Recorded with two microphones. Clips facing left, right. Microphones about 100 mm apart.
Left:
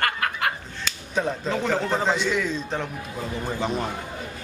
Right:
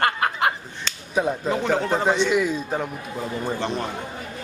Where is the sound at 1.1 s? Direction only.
10° right (ahead or behind).